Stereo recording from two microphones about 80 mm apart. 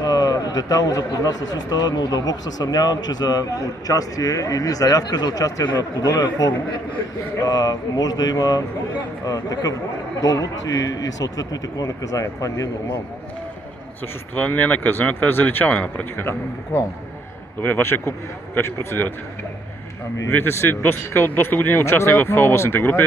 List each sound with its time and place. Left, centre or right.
0.0 s speech: left
14.3 s speech: left
17.6 s speech: left
20.2 s speech: left